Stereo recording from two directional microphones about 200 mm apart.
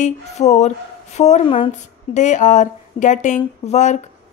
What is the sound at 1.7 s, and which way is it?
A woman's voice, 35° left (ahead or behind).